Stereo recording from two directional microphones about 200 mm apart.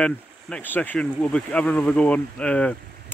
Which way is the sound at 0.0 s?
5° left (ahead or behind).